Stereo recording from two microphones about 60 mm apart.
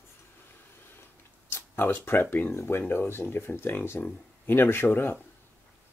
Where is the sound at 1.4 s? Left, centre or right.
Left.